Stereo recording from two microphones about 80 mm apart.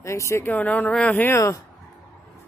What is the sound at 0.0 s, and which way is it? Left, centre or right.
Speech, left.